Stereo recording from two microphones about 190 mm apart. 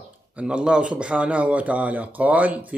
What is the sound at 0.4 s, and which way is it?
A man's voice, 5° right (ahead or behind).